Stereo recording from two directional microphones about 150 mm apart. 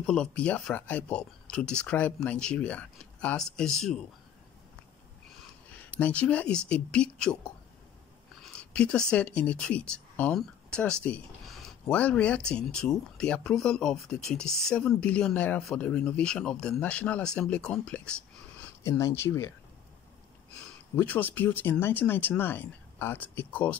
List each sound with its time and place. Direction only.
0.0 s speech: 5° left (ahead or behind)
5.7 s speech: 10° left (ahead or behind)
8.4 s a sound: 5° left (ahead or behind)
9.1 s speech: 10° left (ahead or behind)
18.8 s speech: 20° left (ahead or behind)
20.9 s speech: 10° left (ahead or behind)